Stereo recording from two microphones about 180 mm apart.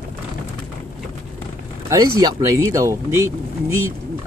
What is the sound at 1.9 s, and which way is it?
Speech, 20° right (ahead or behind).